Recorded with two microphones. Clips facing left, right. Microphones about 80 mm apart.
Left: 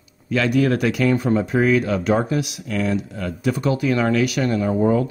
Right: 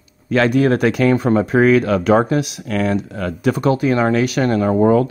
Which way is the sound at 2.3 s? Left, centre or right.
Right.